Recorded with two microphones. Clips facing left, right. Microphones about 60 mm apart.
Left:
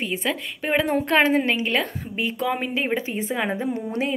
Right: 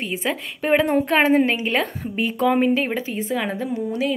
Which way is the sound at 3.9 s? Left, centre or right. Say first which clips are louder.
Right 5 dB; left.